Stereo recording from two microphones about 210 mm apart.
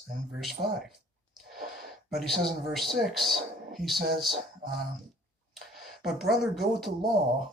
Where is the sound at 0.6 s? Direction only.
35° right (ahead or behind).